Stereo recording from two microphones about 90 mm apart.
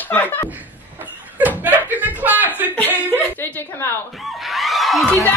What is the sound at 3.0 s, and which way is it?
Speech, 20° left (ahead or behind).